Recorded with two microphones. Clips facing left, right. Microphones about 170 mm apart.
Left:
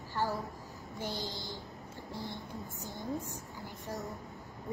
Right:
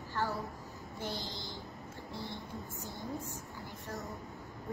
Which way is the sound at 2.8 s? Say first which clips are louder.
Left 4 dB; 20° left (ahead or behind).